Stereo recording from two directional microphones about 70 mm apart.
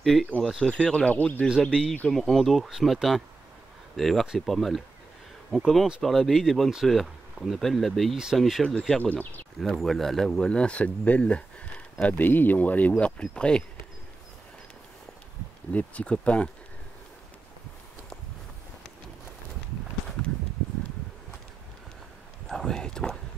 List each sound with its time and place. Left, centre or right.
0.0 s speech: centre
0.7 s speech: centre
1.6 s speech: centre; by 13.1 s left
13.2 s speech: centre
15.7 s speech: left
22.5 s a sound: centre